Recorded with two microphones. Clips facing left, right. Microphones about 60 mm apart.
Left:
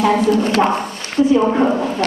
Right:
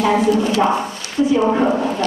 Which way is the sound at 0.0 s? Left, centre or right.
Left.